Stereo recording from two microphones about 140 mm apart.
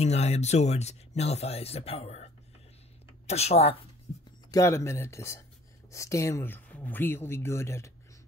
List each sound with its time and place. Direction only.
0.0 s speech: 50° left (ahead or behind)
3.3 s speech: 50° left (ahead or behind)
4.5 s speech: 20° left (ahead or behind)